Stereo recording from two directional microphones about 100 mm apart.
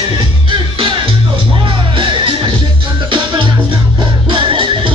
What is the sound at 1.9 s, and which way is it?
Music, 55° right (ahead or behind).